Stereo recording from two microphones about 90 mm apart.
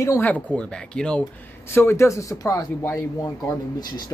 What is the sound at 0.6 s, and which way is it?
Speech, 10° left (ahead or behind).